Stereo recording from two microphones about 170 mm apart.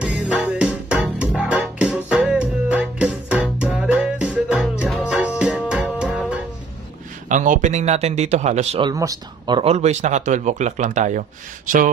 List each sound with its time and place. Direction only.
0.0 s music: 5° right (ahead or behind)
7.2 s speech: 50° right (ahead or behind)
8.8 s speech: 20° right (ahead or behind)
9.7 s speech: 40° right (ahead or behind)